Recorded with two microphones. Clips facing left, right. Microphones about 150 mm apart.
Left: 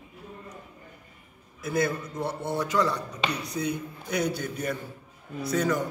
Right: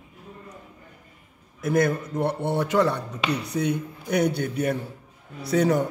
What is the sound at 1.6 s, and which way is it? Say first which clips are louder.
Speech: right 5 dB; 55° right (ahead or behind).